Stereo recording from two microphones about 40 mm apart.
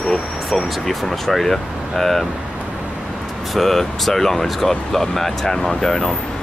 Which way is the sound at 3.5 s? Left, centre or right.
Centre.